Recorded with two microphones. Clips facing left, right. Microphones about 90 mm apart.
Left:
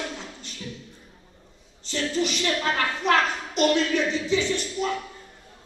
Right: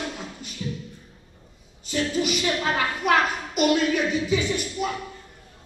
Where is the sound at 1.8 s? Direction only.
10° right (ahead or behind).